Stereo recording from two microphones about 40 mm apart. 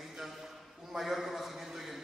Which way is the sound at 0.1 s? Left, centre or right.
Centre.